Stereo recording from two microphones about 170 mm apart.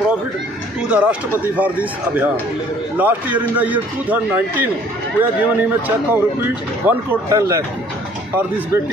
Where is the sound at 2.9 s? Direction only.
10° right (ahead or behind).